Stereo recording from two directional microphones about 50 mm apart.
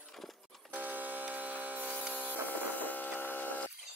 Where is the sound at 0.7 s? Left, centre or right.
Right.